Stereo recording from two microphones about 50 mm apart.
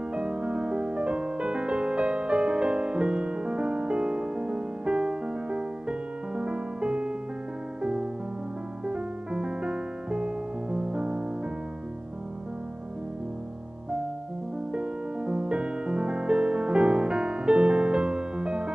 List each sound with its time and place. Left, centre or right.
0.1 s music: right
14.7 s music: centre